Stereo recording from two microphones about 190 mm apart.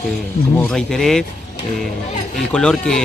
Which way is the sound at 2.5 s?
5° left (ahead or behind).